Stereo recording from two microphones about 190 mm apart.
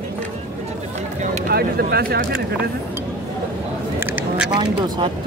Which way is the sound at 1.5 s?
55° right (ahead or behind).